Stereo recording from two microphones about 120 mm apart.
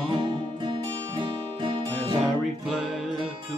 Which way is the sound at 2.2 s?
Centre (ahead or behind).